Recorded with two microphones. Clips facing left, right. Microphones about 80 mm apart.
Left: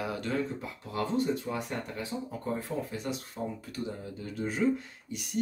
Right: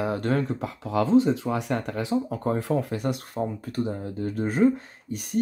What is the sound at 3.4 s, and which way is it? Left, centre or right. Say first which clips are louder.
Speech: right 8 dB; right.